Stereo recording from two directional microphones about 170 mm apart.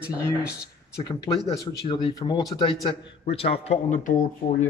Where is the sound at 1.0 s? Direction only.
25° left (ahead or behind); by 4.6 s 50° left (ahead or behind).